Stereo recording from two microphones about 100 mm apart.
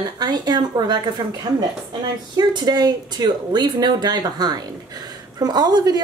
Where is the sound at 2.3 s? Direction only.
45° right (ahead or behind).